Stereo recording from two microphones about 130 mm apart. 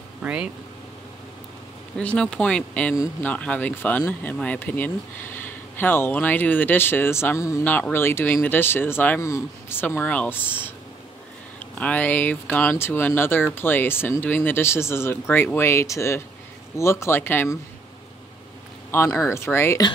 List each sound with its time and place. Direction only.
0.2 s speech: 10° right (ahead or behind)
2.0 s speech: 5° left (ahead or behind)
18.9 s speech: 20° left (ahead or behind)